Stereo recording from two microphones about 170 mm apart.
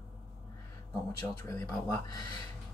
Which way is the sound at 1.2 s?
20° left (ahead or behind).